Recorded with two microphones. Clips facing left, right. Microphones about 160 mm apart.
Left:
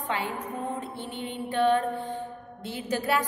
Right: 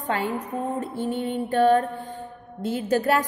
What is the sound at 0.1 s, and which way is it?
A woman's voice, 40° right (ahead or behind).